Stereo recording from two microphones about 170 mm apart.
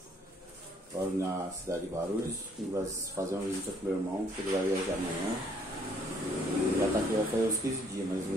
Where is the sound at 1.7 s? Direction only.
20° right (ahead or behind).